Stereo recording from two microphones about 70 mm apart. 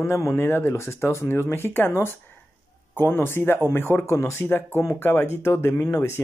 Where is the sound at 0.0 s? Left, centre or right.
Left.